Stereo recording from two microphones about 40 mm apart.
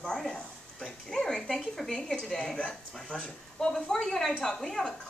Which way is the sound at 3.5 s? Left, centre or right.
Centre.